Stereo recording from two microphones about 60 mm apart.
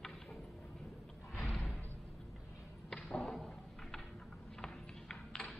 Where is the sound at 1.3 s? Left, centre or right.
Centre.